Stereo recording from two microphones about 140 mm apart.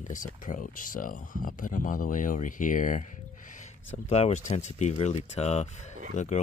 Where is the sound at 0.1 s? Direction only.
70° left (ahead or behind).